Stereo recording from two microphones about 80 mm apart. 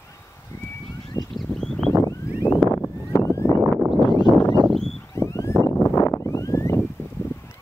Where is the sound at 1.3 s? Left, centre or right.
Centre.